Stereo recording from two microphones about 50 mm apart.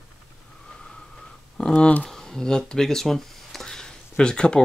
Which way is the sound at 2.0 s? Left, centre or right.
Centre.